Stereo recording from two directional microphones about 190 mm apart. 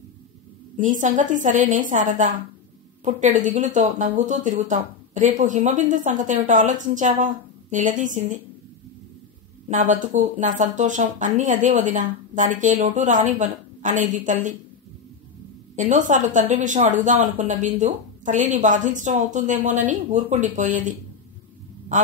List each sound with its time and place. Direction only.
0.7 s a woman's voice: 40° right (ahead or behind)
9.7 s speech: 40° right (ahead or behind)
15.7 s speech: 40° right (ahead or behind)